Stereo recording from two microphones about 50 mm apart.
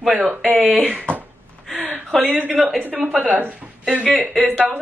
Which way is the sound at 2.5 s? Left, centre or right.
Centre.